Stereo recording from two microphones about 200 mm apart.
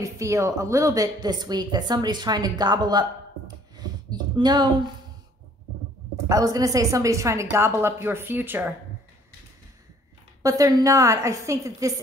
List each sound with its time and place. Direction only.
0.0 s a woman's voice: 15° right (ahead or behind)
6.2 s a woman's voice: 15° right (ahead or behind)
10.4 s a woman's voice: 15° right (ahead or behind)